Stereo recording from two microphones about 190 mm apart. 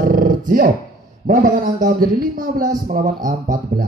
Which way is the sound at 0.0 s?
45° right (ahead or behind).